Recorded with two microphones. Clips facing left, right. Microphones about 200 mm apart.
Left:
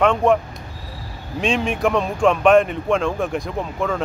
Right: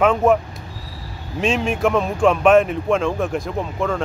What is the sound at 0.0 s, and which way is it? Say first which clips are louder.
Speech: right 1 dB; 5° right (ahead or behind).